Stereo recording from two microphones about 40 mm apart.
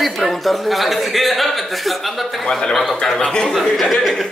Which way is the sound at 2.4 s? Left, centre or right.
Centre.